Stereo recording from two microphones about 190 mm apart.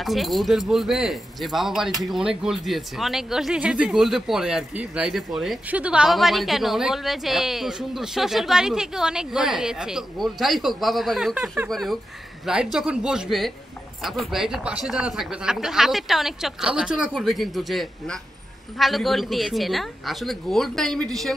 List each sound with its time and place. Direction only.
0.0 s speech: centre (ahead or behind)